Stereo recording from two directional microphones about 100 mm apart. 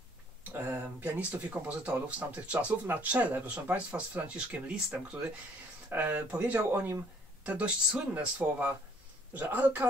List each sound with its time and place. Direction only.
0.5 s speech: 20° right (ahead or behind)